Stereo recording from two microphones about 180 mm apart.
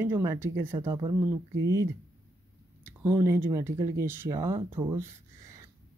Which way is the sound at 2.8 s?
15° right (ahead or behind).